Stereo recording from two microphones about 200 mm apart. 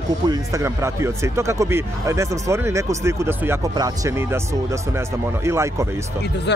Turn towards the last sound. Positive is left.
turn(degrees=-15)  # may be behind; listen again after turning